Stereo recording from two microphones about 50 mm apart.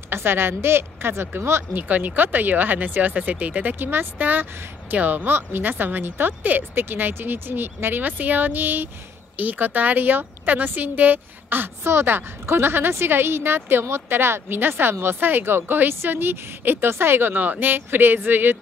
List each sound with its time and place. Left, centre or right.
0.1 s speech: right
1.8 s a woman's voice: right
3.8 s a woman's voice: right
11.8 s speech: right
15.1 s speech: right
17.3 s a woman's voice: right